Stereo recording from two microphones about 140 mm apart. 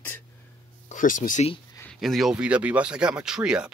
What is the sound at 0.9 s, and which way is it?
Speech, 65° left (ahead or behind).